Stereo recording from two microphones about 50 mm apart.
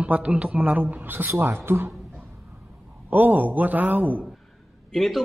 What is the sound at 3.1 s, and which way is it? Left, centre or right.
A man's voice, right.